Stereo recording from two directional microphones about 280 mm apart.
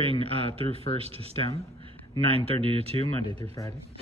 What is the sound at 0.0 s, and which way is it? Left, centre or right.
Speech, centre.